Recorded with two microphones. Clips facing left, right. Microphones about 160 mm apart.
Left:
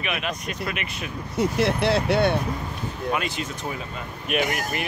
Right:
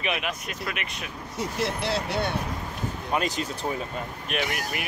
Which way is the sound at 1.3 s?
60° left (ahead or behind).